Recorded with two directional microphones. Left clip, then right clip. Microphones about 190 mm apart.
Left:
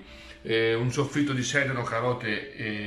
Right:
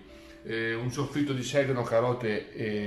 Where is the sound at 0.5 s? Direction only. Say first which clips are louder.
Left 7 dB; centre (ahead or behind).